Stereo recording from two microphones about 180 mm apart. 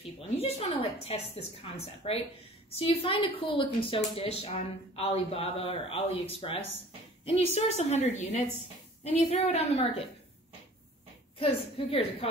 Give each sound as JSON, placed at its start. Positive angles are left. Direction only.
{"t": 0.4, "sound": "a woman's voice", "side_deg": 35}
{"t": 11.3, "sound": "a woman's voice", "side_deg": 30}